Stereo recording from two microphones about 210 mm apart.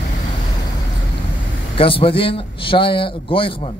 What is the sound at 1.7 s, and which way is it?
A man's voice, 25° left (ahead or behind).